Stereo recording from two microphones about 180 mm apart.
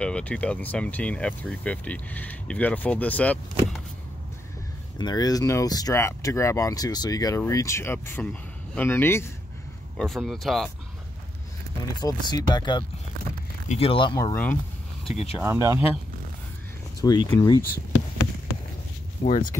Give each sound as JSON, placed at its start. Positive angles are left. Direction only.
{"t": 0.0, "sound": "speech", "side_deg": 5}
{"t": 4.9, "sound": "speech", "side_deg": 20}
{"t": 9.9, "sound": "speech", "side_deg": 0}
{"t": 12.0, "sound": "speech", "side_deg": 20}
{"t": 15.0, "sound": "speech", "side_deg": 35}
{"t": 15.4, "sound": "speech", "side_deg": -15}
{"t": 17.0, "sound": "speech", "side_deg": 20}
{"t": 19.2, "sound": "speech", "side_deg": 40}